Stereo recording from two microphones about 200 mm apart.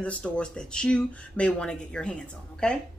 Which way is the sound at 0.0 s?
5° left (ahead or behind).